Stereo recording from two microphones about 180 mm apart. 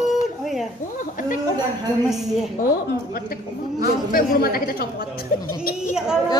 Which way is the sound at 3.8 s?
55° left (ahead or behind).